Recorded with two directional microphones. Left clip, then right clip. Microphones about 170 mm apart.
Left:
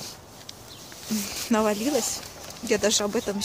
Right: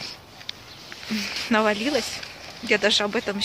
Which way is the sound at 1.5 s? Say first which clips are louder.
Right 2 dB; 5° left (ahead or behind).